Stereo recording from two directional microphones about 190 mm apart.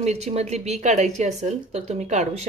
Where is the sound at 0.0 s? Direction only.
35° right (ahead or behind).